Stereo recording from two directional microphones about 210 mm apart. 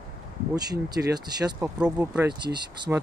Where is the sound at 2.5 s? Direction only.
20° right (ahead or behind).